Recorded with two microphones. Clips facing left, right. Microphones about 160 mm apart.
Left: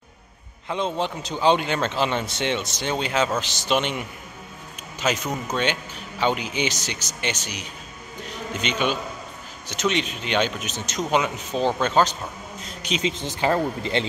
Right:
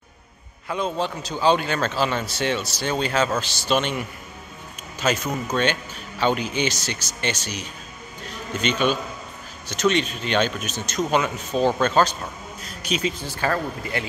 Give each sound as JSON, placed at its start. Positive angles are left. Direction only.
{"t": 0.7, "sound": "speech", "side_deg": 25}
{"t": 5.0, "sound": "a man's voice", "side_deg": 15}